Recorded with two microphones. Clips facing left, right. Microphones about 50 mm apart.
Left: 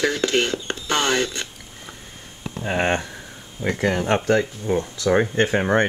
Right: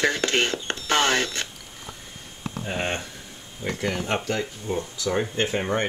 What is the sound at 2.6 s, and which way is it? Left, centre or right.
Speech, left.